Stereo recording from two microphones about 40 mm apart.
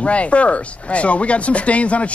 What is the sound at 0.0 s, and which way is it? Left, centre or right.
Speech, left.